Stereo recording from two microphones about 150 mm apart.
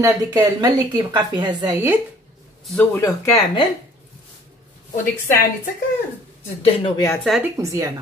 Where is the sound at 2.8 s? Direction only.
20° left (ahead or behind).